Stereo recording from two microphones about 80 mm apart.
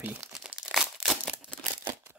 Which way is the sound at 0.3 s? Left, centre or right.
Centre.